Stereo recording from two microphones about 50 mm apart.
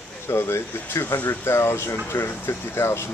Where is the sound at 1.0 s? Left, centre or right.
Left.